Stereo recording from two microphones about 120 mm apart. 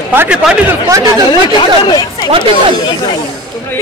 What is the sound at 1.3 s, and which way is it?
Speech, 40° left (ahead or behind).